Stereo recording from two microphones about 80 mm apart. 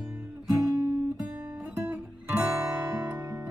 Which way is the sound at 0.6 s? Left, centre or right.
Right.